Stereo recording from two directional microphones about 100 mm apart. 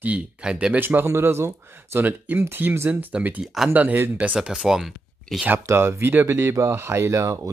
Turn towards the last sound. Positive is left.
turn(degrees=-35)  # may be behind; listen again after turning